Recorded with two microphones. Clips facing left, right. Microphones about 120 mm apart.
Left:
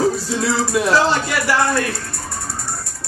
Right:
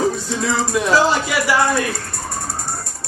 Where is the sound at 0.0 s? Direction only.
Centre (ahead or behind).